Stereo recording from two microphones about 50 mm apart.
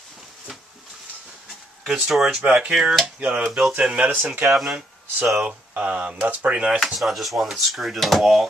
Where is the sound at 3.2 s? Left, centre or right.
Right.